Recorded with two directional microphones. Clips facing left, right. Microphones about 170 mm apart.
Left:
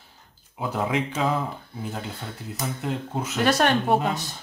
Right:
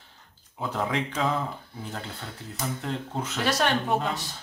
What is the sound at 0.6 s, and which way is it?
Speech, 5° left (ahead or behind).